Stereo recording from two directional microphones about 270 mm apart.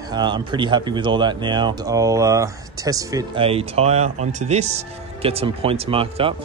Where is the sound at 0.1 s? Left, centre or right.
Centre.